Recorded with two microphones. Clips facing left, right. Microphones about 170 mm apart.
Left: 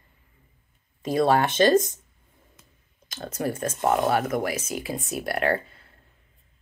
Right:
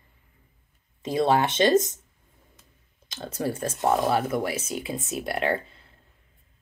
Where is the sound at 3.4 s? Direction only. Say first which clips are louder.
Even; 30° right (ahead or behind).